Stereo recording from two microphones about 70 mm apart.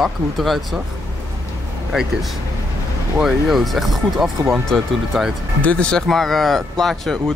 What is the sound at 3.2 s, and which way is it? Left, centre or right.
Speech, centre.